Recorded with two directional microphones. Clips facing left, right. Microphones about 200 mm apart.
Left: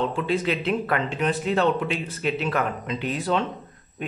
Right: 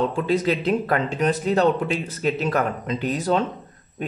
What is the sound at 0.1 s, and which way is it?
Speech, 40° right (ahead or behind).